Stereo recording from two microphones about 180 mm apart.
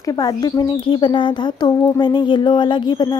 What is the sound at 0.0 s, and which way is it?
Speech, 20° left (ahead or behind).